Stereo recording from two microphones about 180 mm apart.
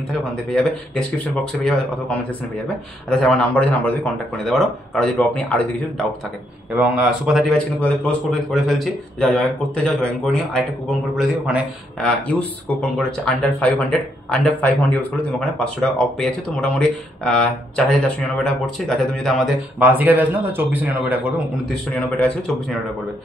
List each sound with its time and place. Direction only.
0.2 s speech: centre (ahead or behind)
6.7 s speech: 5° right (ahead or behind)
21.9 s speech: 5° left (ahead or behind)